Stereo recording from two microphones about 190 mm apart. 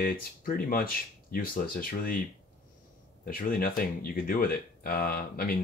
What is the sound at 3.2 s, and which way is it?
Speech, 50° left (ahead or behind).